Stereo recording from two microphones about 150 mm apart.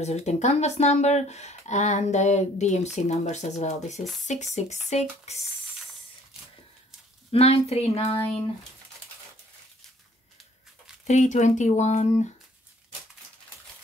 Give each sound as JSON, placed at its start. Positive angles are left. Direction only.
{"t": 0.0, "sound": "speech", "side_deg": 50}
{"t": 7.2, "sound": "speech", "side_deg": 45}
{"t": 11.1, "sound": "speech", "side_deg": 50}